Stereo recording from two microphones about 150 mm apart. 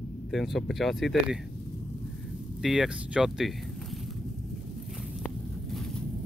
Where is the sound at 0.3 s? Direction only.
Centre (ahead or behind).